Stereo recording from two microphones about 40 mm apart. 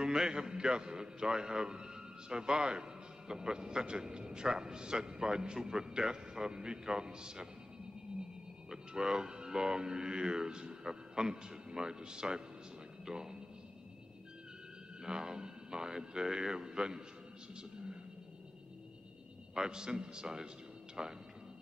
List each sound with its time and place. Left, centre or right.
0.0 s a man's voice: centre
8.6 s a man's voice: centre
15.0 s a man's voice: centre
19.5 s a man's voice: centre